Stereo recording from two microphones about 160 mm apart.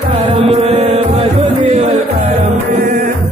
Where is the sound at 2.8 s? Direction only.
60° right (ahead or behind).